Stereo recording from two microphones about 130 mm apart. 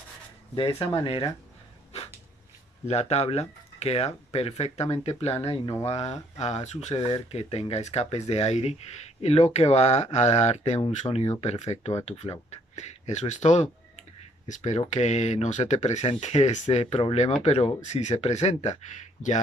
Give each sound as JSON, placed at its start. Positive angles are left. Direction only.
{"t": 0.6, "sound": "speech", "side_deg": 45}
{"t": 2.9, "sound": "speech", "side_deg": 55}
{"t": 16.7, "sound": "speech", "side_deg": 50}